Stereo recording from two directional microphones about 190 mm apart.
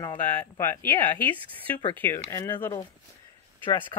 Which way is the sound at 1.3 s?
25° right (ahead or behind).